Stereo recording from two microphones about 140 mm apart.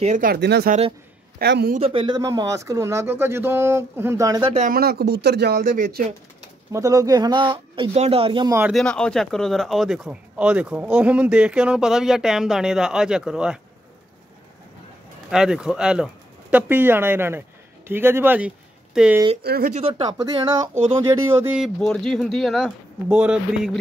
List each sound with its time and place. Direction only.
0.0 s speech: 75° right (ahead or behind)
1.8 s speech: 40° right (ahead or behind)
4.6 s speech: 85° right
6.7 s speech: 25° right (ahead or behind); by 8.5 s 40° right (ahead or behind)
8.7 s speech: 5° left (ahead or behind)
15.3 s speech: 5° right (ahead or behind)
19.7 s speech: 45° right (ahead or behind)
20.1 s speech: 25° right (ahead or behind)
21.5 s speech: 5° right (ahead or behind)